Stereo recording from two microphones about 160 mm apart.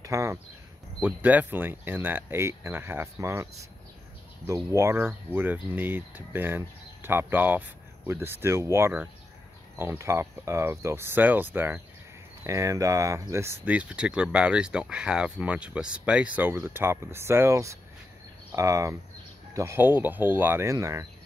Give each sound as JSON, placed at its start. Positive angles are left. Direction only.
{"t": 0.0, "sound": "speech", "side_deg": -20}
{"t": 4.7, "sound": "speech", "side_deg": -15}